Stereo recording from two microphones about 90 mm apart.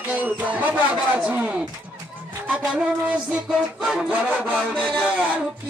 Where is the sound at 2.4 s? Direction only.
15° right (ahead or behind).